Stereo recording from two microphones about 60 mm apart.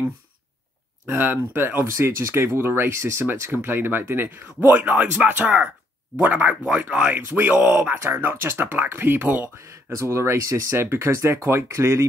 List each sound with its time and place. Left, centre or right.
1.0 s speech: right
1.9 s speech: right
7.2 s speech: right
9.6 s speech: right